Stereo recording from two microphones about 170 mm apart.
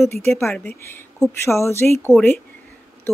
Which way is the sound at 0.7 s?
10° left (ahead or behind).